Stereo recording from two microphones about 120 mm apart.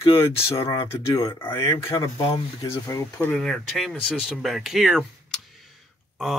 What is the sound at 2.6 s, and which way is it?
Speech, 20° left (ahead or behind).